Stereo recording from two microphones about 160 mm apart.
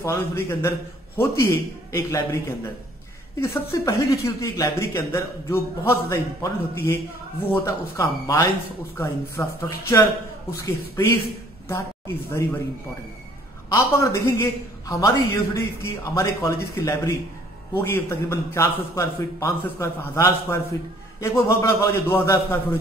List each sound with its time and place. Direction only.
0.0 s speech: 15° left (ahead or behind)
13.7 s speech: 15° left (ahead or behind)